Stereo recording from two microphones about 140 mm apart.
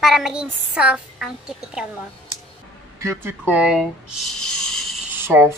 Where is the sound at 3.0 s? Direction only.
20° right (ahead or behind).